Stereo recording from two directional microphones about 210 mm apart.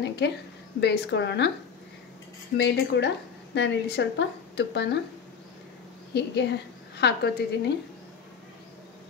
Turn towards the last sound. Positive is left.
turn(degrees=50)  # may be behind; listen again after turning